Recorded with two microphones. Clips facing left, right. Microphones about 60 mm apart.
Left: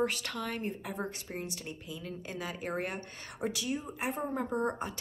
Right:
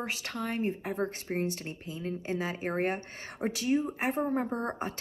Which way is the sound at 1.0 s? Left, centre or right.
Right.